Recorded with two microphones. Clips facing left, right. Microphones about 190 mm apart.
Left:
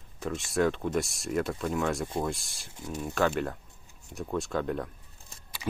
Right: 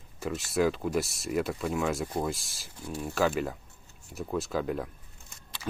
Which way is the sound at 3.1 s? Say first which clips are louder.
Even; centre (ahead or behind).